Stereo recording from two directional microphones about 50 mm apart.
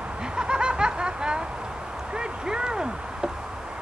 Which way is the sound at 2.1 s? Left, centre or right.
Centre.